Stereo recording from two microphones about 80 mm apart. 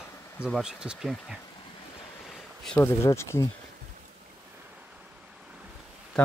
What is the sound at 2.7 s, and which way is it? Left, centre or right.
Speech, centre.